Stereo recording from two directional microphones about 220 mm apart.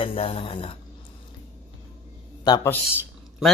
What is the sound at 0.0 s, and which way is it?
Speech, 25° left (ahead or behind).